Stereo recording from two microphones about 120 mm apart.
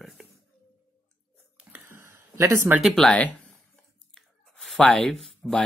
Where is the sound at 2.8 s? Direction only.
5° left (ahead or behind).